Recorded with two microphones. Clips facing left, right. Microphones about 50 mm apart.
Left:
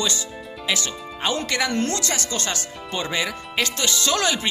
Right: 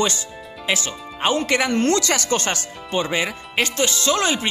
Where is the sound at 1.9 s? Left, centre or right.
Right.